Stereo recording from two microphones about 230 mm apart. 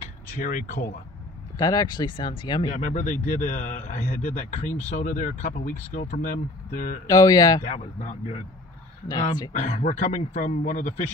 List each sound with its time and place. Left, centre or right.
0.4 s speech: left
1.6 s speech: centre
2.8 s speech: left
7.1 s speech: centre
7.6 s speech: left
9.5 s speech: left